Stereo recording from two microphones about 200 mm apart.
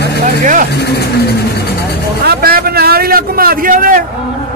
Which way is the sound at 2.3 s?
50° right (ahead or behind).